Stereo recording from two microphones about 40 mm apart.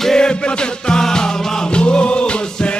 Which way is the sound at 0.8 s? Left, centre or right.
Centre.